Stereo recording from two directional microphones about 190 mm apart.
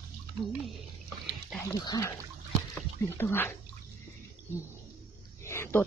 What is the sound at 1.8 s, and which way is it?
Speech, 20° left (ahead or behind).